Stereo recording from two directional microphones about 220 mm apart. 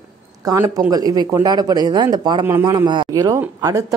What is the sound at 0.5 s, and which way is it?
Speech, 15° right (ahead or behind).